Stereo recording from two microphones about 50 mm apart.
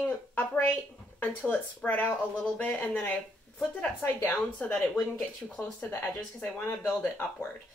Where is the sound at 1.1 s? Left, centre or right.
Left.